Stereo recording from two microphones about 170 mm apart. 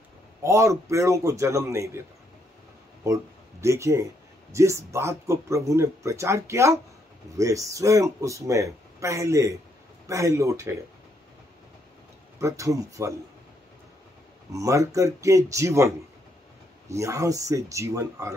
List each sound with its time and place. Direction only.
0.4 s speech: 15° right (ahead or behind)
3.6 s speech: 15° right (ahead or behind)
12.4 s speech: 20° right (ahead or behind)
14.5 s speech: 20° right (ahead or behind)
16.9 s speech: 15° right (ahead or behind)